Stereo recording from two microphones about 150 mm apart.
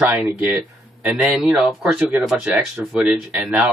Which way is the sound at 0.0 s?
10° right (ahead or behind).